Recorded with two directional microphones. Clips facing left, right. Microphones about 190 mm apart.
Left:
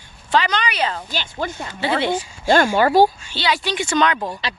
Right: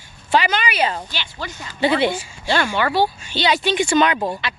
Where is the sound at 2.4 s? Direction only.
45° left (ahead or behind).